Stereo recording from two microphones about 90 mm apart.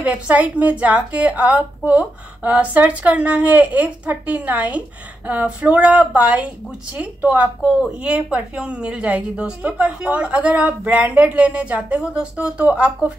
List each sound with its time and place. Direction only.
0.0 s a woman's voice: 15° right (ahead or behind)